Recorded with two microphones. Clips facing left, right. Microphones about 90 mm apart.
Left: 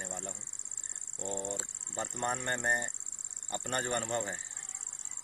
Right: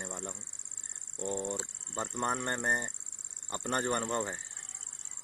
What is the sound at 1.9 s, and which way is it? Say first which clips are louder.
Speech: right 2 dB; 35° right (ahead or behind).